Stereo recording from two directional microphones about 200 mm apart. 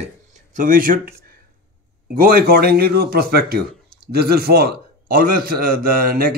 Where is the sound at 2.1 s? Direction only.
45° right (ahead or behind).